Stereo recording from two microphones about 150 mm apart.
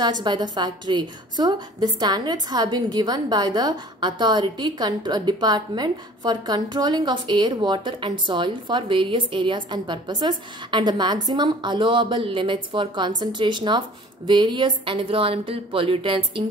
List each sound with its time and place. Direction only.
0.0 s a woman's voice: 30° right (ahead or behind)